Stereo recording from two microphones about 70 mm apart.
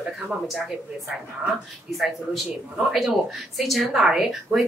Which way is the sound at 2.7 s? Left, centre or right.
Centre.